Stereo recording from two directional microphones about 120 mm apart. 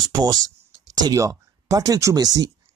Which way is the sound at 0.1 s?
30° right (ahead or behind).